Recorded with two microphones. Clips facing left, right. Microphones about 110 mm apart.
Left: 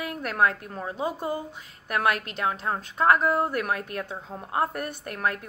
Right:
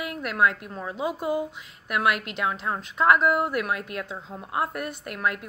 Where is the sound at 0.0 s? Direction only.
40° left (ahead or behind).